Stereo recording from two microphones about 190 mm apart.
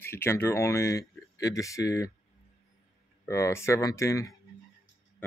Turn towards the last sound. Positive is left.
turn(degrees=15)  # may be behind; listen again after turning